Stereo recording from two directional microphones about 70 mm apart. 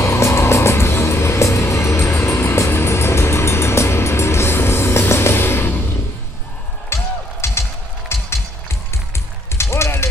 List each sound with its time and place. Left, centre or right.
0.0 s vehicle: left
6.9 s music: left
9.5 s music: left